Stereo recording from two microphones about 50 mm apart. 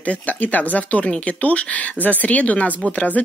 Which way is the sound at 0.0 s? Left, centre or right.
Left.